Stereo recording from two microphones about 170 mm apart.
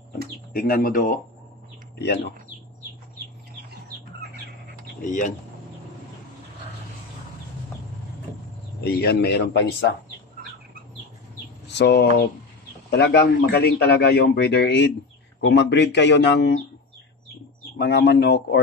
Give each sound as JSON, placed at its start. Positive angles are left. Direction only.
{"t": 0.5, "sound": "speech", "side_deg": 60}
{"t": 2.0, "sound": "speech", "side_deg": 90}
{"t": 5.0, "sound": "speech", "side_deg": 50}
{"t": 8.8, "sound": "speech", "side_deg": 70}
{"t": 11.8, "sound": "a man's voice", "side_deg": 85}
{"t": 17.7, "sound": "a man's voice", "side_deg": 80}